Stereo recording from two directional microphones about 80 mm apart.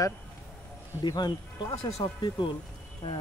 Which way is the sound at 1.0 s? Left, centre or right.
Left.